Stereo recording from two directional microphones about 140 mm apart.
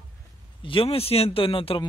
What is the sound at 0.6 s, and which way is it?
Speech, 40° left (ahead or behind).